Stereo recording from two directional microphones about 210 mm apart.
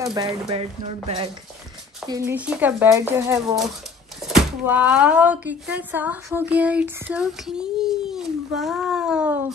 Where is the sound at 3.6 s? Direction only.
Centre (ahead or behind).